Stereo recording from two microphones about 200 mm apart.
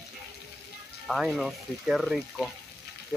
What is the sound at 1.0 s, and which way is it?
Speech, centre (ahead or behind).